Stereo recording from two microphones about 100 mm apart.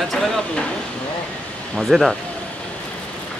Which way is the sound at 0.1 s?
Centre (ahead or behind).